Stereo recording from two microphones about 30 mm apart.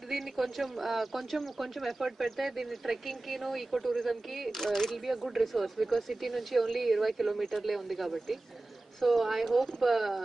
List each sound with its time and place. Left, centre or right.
0.1 s speech: centre
4.5 s speech: centre
4.9 s speech: centre